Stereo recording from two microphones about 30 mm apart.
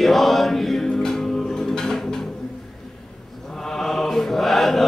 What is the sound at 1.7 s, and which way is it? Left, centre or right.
Music, left.